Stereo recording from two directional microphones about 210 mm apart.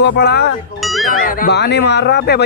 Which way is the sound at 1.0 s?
40° left (ahead or behind).